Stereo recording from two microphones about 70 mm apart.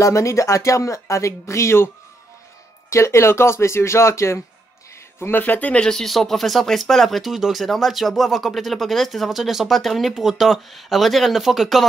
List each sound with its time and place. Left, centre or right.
0.0 s speech: left
2.9 s speech: left
5.3 s speech: left
5.8 s speech: centre